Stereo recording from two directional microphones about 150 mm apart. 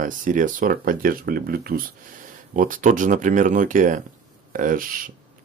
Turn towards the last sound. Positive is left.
turn(degrees=-65)  # may be behind; listen again after turning